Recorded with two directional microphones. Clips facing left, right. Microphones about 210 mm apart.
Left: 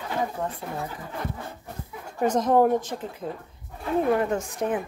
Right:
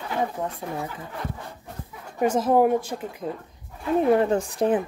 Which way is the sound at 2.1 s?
10° right (ahead or behind).